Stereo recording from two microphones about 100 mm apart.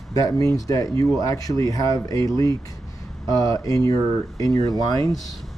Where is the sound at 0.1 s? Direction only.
35° left (ahead or behind).